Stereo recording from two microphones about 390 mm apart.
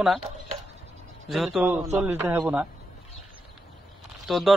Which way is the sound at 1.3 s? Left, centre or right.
Centre.